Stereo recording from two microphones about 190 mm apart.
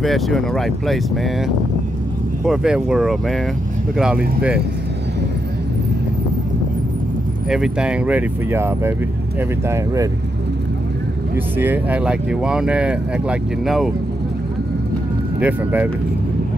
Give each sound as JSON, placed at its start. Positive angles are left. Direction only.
{"t": 0.0, "sound": "speech", "side_deg": 0}
{"t": 2.4, "sound": "speech", "side_deg": -5}
{"t": 7.4, "sound": "speech", "side_deg": -5}
{"t": 11.5, "sound": "speech", "side_deg": -10}
{"t": 15.4, "sound": "speech", "side_deg": -10}